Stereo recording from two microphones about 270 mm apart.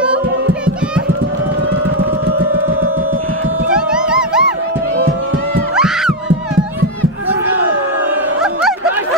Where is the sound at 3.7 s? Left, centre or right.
Centre.